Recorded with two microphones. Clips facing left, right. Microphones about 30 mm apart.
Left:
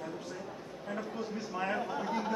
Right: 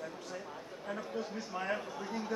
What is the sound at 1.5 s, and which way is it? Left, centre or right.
Speech, centre.